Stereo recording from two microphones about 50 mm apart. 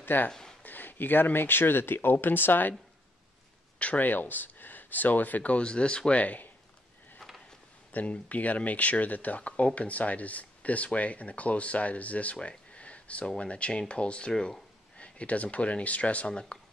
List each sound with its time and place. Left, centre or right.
0.0 s speech: left
0.3 s speech: centre
0.6 s speech: left
3.8 s speech: left
7.9 s speech: left